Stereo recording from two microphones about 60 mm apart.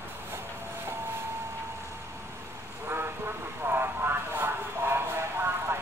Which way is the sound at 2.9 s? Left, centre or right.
Right.